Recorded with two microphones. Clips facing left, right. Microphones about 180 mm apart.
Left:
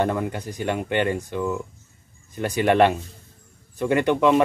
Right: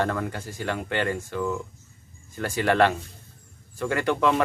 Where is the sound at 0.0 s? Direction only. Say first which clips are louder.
Left 3 dB; 20° left (ahead or behind).